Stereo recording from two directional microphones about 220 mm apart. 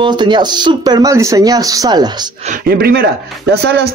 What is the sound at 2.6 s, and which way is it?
Speech, 45° right (ahead or behind).